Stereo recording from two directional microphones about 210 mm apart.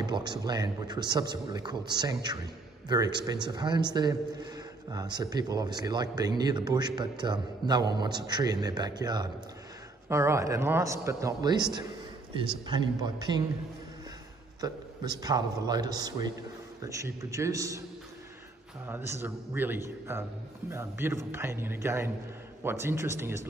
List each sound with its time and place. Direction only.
0.0 s a man's voice: 20° right (ahead or behind)
14.6 s a man's voice: 20° right (ahead or behind)
18.9 s a man's voice: 10° right (ahead or behind)